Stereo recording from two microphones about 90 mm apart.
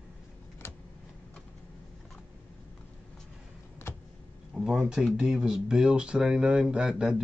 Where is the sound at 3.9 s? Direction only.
30° left (ahead or behind).